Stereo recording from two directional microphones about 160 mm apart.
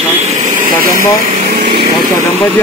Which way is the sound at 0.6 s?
60° right (ahead or behind).